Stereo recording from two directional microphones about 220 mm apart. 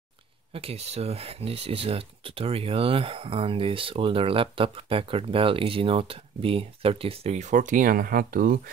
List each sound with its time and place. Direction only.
0.5 s speech: 25° right (ahead or behind)